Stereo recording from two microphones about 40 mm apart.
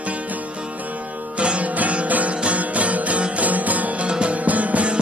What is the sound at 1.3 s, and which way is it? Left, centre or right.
Music, right.